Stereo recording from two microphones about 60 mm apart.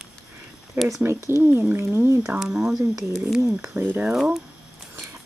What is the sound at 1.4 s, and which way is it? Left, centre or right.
Speech, right.